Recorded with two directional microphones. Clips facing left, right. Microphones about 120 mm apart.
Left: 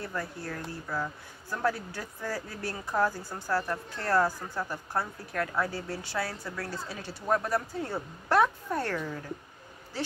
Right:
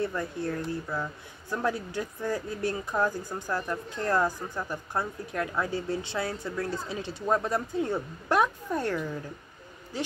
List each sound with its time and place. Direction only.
0.0 s speech: 20° right (ahead or behind)